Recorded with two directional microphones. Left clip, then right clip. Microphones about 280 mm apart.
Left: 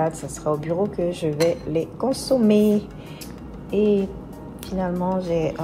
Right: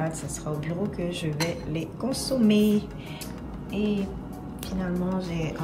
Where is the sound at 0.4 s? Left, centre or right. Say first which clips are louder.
Left 12 dB; left.